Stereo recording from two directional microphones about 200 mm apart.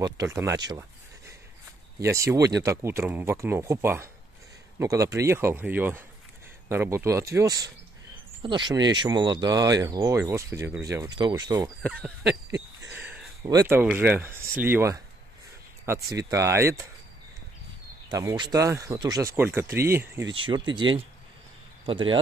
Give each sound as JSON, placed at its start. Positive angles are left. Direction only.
{"t": 0.0, "sound": "speech", "side_deg": -15}
{"t": 0.7, "sound": "a sound", "side_deg": -15}
{"t": 2.0, "sound": "speech", "side_deg": -15}
{"t": 11.9, "sound": "a sound", "side_deg": -5}
{"t": 13.5, "sound": "speech", "side_deg": -15}
{"t": 18.1, "sound": "speech", "side_deg": -20}
{"t": 20.3, "sound": "speech", "side_deg": -25}